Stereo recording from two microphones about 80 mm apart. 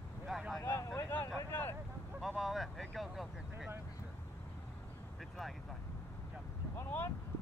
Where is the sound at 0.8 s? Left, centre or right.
Left.